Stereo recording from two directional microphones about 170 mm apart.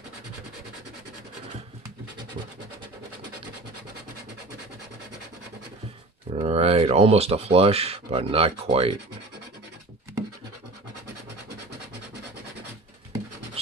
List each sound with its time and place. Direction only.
6.3 s speech: 35° right (ahead or behind)